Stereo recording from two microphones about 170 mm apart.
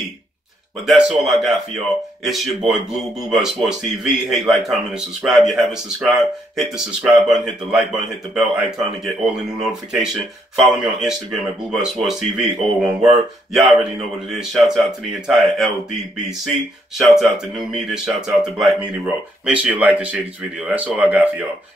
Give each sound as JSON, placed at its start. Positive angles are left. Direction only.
{"t": 0.8, "sound": "a man's voice", "side_deg": -5}
{"t": 17.0, "sound": "a man's voice", "side_deg": 0}